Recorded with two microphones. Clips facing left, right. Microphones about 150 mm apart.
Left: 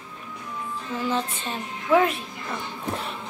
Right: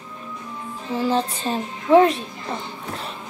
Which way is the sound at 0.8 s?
35° right (ahead or behind).